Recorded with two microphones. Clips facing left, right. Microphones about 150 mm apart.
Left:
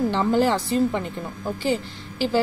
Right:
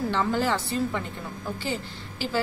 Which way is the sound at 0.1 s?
20° left (ahead or behind).